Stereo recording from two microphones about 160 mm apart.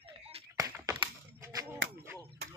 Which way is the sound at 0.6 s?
20° right (ahead or behind).